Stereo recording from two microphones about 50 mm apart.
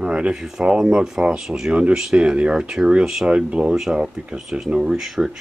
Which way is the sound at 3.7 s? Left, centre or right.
Centre.